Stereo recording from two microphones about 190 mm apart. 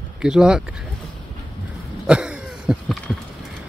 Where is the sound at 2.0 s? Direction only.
5° right (ahead or behind).